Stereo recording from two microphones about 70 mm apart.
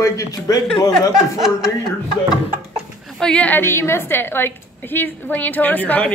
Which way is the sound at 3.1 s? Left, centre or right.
Centre.